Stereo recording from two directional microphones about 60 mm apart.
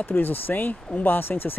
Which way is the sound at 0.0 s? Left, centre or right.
Left.